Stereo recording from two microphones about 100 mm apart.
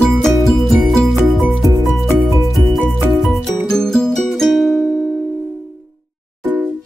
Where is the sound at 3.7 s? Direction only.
5° left (ahead or behind).